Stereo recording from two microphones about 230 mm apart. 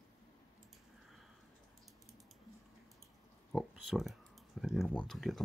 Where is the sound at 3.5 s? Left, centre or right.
Centre.